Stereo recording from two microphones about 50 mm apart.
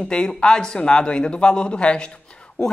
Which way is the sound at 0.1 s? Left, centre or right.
Centre.